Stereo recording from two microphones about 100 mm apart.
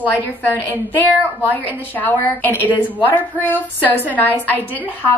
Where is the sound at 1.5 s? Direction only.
15° left (ahead or behind).